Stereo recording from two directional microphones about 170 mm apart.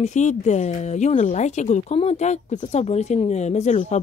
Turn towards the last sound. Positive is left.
turn(degrees=40)  # may be behind; listen again after turning